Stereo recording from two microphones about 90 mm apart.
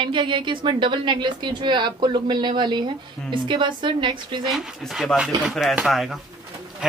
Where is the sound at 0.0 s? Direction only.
65° right (ahead or behind).